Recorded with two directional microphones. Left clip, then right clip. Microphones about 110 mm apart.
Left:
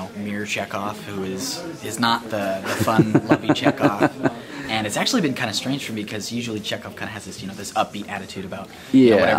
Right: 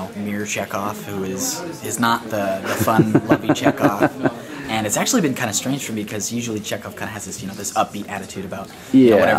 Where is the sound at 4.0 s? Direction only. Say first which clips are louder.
Right 2 dB; 25° left (ahead or behind).